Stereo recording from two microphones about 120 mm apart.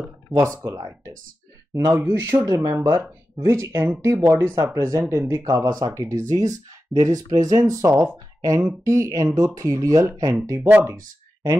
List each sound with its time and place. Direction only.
0.7 s speech: 25° right (ahead or behind)